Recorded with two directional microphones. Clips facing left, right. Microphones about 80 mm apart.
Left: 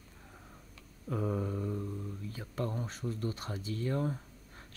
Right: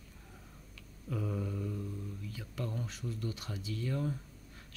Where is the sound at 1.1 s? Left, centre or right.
Left.